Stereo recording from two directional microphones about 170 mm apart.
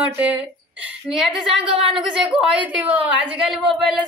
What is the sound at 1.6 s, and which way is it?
Speech, 30° right (ahead or behind).